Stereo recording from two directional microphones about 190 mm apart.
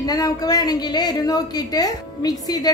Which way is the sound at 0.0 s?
20° left (ahead or behind).